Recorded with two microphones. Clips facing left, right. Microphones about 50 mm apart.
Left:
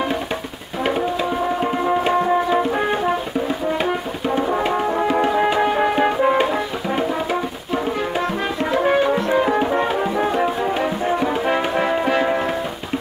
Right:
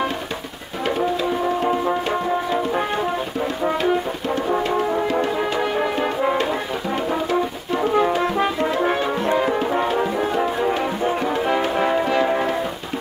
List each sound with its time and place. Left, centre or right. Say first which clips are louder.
1.6 s music: left 1 dB; centre
4.4 s music: left 1 dB; centre
8.8 s brass instrument: left 4 dB; centre
9.3 s music: left 2 dB; centre